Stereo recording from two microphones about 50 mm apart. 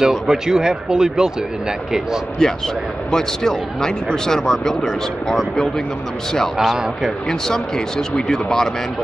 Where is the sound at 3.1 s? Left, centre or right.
Centre.